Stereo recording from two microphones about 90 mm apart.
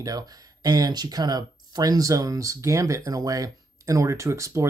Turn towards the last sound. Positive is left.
turn(degrees=-35)  # may be behind; listen again after turning